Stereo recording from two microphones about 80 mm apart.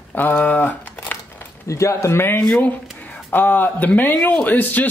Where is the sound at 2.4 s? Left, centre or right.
Centre.